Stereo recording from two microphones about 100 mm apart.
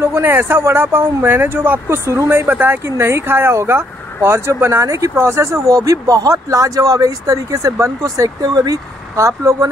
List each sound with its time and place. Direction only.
0.0 s speech: 20° right (ahead or behind)